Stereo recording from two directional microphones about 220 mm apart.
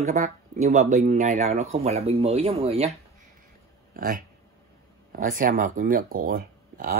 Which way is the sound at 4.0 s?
40° right (ahead or behind).